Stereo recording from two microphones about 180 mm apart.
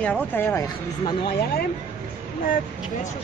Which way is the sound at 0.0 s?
10° left (ahead or behind).